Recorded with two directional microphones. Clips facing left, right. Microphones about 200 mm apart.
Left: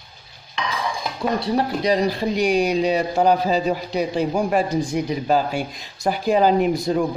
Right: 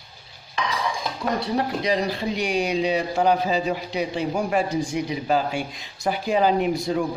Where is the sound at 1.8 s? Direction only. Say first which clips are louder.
Left 4 dB; 40° left (ahead or behind).